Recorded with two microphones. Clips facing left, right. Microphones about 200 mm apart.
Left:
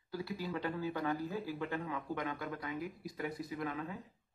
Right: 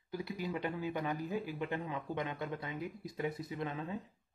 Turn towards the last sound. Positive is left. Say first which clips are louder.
# right 1 dB
turn(degrees=-25)  # may be behind; listen again after turning